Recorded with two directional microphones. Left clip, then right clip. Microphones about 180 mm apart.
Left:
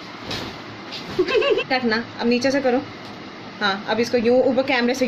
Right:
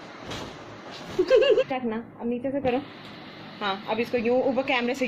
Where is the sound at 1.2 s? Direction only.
20° left (ahead or behind).